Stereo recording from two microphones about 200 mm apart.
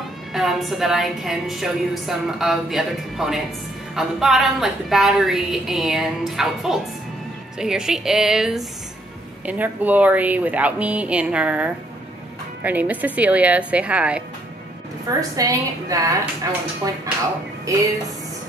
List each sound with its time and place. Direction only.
0.3 s a woman's voice: centre (ahead or behind)
15.0 s a woman's voice: 15° right (ahead or behind)
17.7 s a woman's voice: 15° right (ahead or behind)